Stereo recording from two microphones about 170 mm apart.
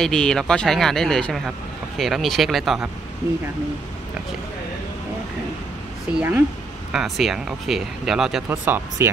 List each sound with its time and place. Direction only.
0.0 s speech: 5° left (ahead or behind)
6.1 s speech: 10° right (ahead or behind)